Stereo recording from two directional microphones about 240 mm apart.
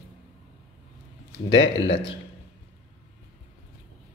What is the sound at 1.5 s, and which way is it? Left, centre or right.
Speech, left.